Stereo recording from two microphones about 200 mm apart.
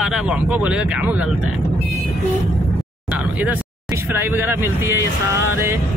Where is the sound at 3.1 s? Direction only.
5° right (ahead or behind).